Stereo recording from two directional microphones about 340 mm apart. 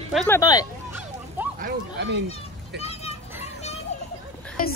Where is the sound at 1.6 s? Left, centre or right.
Right.